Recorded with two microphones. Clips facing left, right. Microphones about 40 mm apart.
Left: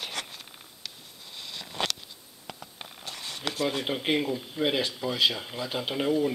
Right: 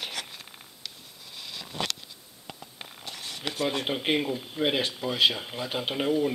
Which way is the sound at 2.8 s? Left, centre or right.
Centre.